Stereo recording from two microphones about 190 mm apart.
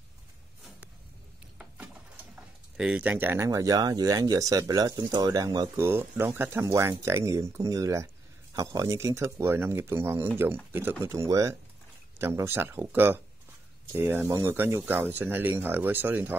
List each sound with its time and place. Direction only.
1.6 s speech: 10° right (ahead or behind)